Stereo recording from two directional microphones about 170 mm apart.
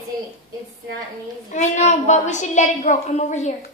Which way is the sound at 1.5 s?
45° left (ahead or behind).